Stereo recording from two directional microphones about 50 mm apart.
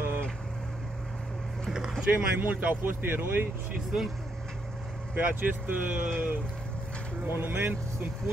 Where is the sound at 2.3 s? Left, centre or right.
Right.